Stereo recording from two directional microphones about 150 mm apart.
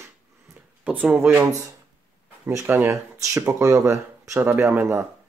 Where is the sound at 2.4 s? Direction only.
15° right (ahead or behind).